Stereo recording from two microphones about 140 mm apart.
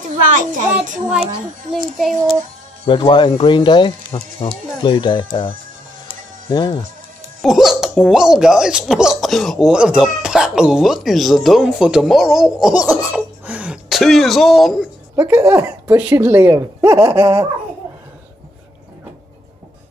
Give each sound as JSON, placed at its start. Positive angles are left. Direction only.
{"t": 0.3, "sound": "a child's voice", "side_deg": -65}
{"t": 2.9, "sound": "speech", "side_deg": 35}
{"t": 7.4, "sound": "speech", "side_deg": 0}
{"t": 15.1, "sound": "speech", "side_deg": -15}